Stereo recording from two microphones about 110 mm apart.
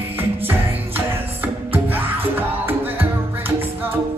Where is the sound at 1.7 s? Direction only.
20° right (ahead or behind).